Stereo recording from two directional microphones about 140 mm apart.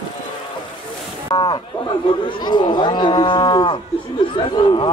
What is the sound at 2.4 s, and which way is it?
Cattle, 30° left (ahead or behind).